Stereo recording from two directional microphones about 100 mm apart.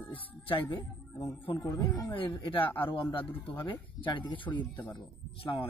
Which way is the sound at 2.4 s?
60° left (ahead or behind).